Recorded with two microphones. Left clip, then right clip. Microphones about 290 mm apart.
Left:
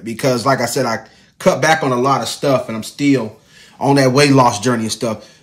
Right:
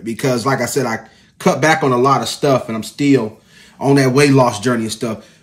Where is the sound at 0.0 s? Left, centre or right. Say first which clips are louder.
Left 1 dB; centre.